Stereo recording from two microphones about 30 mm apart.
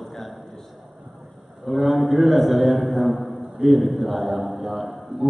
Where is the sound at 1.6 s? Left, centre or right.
Centre.